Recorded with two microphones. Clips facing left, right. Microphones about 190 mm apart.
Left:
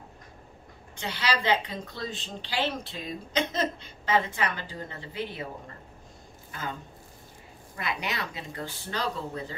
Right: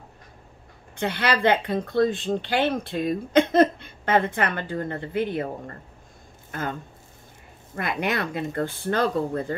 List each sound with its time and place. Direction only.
0.9 s speech: 55° right (ahead or behind)
7.7 s speech: 50° right (ahead or behind)